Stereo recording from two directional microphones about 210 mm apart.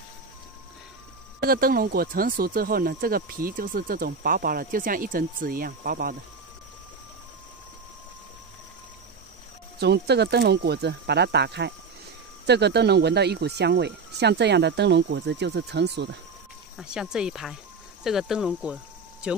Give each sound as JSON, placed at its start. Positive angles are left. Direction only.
{"t": 1.4, "sound": "speech", "side_deg": -45}
{"t": 9.8, "sound": "speech", "side_deg": -50}
{"t": 16.7, "sound": "speech", "side_deg": 0}